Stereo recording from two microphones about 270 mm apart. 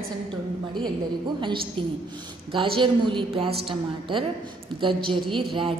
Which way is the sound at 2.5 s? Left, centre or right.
Centre.